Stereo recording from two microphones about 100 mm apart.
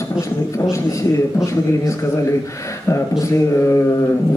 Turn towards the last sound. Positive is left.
turn(degrees=30)  # may be behind; listen again after turning